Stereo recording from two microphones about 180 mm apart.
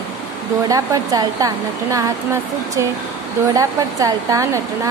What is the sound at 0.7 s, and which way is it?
Speech, 20° right (ahead or behind).